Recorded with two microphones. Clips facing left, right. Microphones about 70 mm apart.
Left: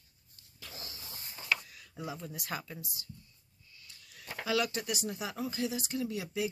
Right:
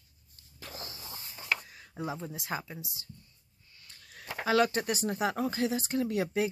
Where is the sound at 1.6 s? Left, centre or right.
Right.